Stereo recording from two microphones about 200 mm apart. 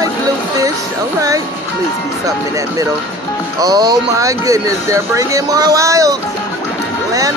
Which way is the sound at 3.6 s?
20° right (ahead or behind).